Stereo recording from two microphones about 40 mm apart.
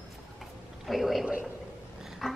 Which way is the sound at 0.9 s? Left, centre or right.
Centre.